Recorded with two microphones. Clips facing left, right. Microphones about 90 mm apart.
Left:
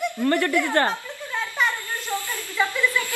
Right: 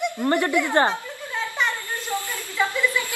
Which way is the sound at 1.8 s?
20° right (ahead or behind).